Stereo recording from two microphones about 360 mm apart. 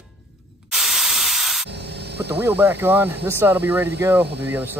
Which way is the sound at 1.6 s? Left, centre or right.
Right.